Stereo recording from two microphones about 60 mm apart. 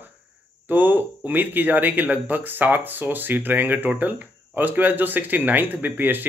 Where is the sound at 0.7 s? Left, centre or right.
Right.